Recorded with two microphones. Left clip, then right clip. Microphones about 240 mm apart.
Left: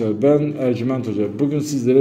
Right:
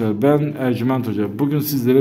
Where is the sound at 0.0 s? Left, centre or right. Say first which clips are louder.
Left 1 dB; right.